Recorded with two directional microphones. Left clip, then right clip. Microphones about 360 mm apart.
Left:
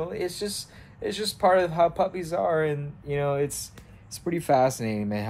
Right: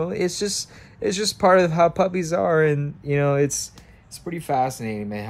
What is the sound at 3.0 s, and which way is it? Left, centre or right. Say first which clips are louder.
Speech: right 5 dB; right.